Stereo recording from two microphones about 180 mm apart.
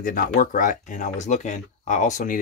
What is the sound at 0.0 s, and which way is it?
Speech, 50° left (ahead or behind).